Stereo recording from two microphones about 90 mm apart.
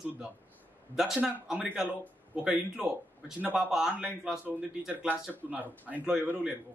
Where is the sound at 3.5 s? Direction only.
10° right (ahead or behind).